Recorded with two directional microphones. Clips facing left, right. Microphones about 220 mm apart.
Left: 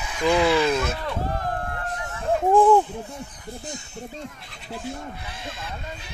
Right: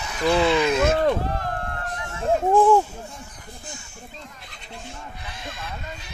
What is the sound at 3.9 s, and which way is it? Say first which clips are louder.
Speech: left 7 dB; 40° left (ahead or behind).